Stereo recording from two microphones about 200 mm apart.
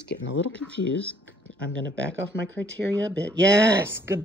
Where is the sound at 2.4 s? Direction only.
65° right (ahead or behind).